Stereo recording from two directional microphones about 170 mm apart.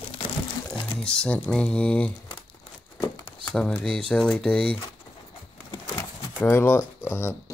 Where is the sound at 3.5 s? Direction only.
5° left (ahead or behind).